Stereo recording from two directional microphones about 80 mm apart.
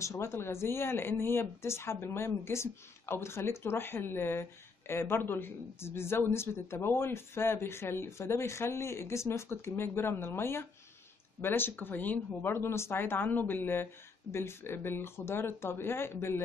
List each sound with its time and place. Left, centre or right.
0.0 s speech: left